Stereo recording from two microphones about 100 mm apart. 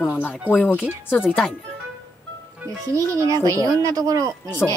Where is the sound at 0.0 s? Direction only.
20° left (ahead or behind).